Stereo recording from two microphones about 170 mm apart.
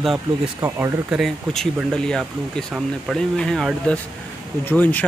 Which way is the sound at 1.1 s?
Centre (ahead or behind).